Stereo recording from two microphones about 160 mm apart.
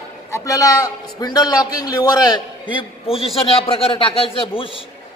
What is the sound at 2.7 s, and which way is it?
A man's voice, 35° left (ahead or behind).